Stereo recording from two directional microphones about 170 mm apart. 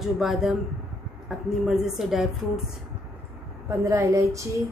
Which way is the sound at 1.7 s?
Centre (ahead or behind).